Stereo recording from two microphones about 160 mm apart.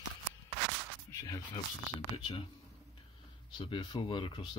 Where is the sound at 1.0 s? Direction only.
20° left (ahead or behind).